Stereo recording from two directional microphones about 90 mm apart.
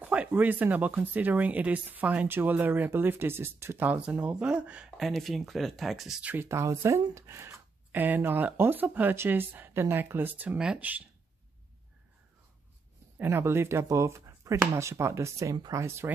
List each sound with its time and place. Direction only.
0.0 s speech: 15° right (ahead or behind)
4.9 s speech: centre (ahead or behind)
6.2 s speech: 25° right (ahead or behind)
7.9 s speech: 20° right (ahead or behind)
13.2 s speech: 25° right (ahead or behind)